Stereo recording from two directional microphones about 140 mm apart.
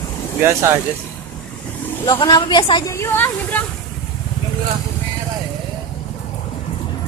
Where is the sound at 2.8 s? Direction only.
20° left (ahead or behind).